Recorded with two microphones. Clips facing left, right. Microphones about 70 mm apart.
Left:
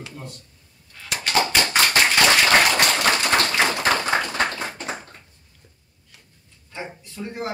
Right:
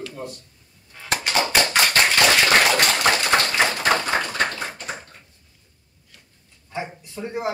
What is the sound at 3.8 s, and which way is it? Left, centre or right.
Tap, centre.